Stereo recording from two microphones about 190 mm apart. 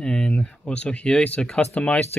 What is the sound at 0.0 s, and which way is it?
Speech, 5° left (ahead or behind).